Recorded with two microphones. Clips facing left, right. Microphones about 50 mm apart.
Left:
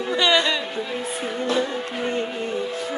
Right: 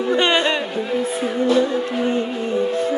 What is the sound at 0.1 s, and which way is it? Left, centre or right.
Music, right.